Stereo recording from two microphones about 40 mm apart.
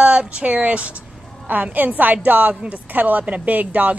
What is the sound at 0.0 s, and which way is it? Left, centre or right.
A woman's voice, right.